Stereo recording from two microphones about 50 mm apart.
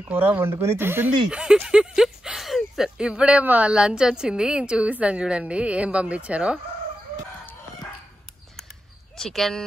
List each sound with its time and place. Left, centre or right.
0.1 s speech: right
0.4 s speech: right
0.7 s speech: right
1.3 s a sound: centre
3.0 s speech: centre
3.7 s a woman's voice: centre
9.1 s speech: centre